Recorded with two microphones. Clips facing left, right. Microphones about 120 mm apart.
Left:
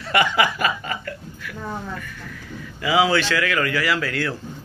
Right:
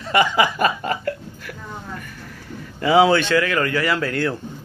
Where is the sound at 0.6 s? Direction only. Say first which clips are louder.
Right 4 dB; 35° right (ahead or behind).